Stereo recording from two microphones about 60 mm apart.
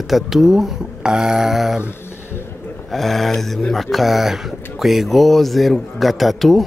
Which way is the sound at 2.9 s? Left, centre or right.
Centre.